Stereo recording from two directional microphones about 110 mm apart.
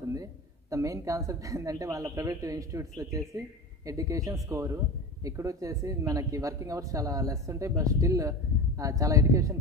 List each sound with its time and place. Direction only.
0.1 s a man's voice: 30° right (ahead or behind)